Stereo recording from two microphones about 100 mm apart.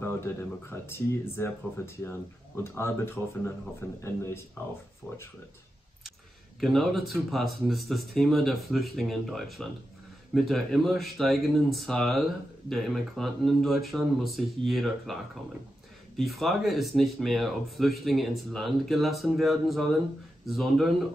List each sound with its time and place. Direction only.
0.0 s speech: 25° left (ahead or behind)
3.2 s speech: 10° right (ahead or behind)
4.0 s speech: 25° left (ahead or behind)
6.6 s speech: centre (ahead or behind)
16.2 s speech: centre (ahead or behind)